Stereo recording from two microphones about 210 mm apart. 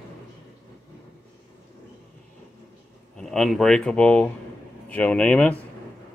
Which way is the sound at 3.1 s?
Centre (ahead or behind).